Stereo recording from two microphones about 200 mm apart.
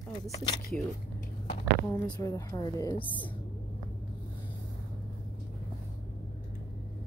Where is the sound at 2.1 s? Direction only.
15° left (ahead or behind).